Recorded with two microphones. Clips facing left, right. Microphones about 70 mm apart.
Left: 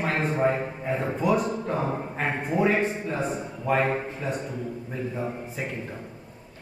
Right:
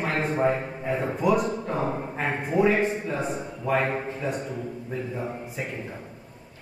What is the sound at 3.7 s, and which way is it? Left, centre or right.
Speech, centre.